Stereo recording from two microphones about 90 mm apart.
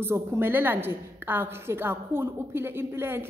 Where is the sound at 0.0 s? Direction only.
30° right (ahead or behind).